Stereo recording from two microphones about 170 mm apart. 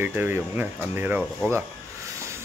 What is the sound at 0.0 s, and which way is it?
Speech, 10° right (ahead or behind).